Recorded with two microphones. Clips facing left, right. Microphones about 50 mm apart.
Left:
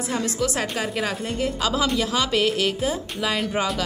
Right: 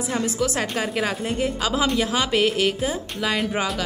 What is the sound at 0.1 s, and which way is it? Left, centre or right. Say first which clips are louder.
Speech: right 1 dB; centre.